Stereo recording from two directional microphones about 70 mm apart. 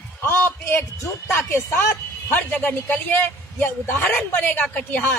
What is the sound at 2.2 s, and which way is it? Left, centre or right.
A man's voice, left.